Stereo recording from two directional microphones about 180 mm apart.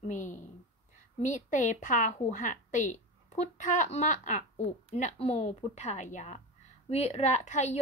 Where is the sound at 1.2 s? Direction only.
45° left (ahead or behind).